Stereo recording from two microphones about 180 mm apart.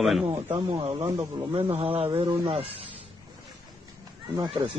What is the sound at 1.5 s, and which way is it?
Speech, 35° right (ahead or behind).